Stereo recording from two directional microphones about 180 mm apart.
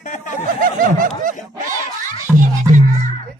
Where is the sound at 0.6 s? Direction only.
50° right (ahead or behind).